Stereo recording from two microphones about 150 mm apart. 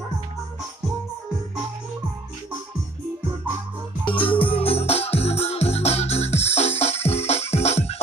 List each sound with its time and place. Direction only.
4.0 s music: 35° left (ahead or behind)